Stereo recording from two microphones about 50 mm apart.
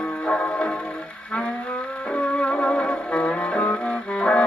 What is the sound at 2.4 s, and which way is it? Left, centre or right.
Music, left.